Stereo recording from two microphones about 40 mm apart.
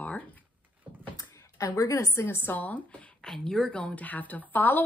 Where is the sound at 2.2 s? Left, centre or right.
Left.